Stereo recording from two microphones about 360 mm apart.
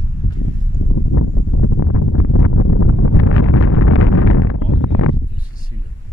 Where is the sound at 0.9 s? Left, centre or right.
Left.